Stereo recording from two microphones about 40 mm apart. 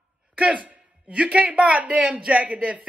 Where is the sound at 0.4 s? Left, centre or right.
Right.